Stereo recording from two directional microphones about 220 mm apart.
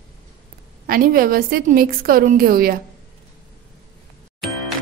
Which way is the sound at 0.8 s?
40° right (ahead or behind).